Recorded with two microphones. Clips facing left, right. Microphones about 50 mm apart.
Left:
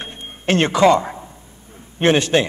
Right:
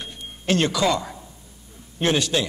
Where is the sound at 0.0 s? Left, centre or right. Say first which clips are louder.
Left 6 dB; left.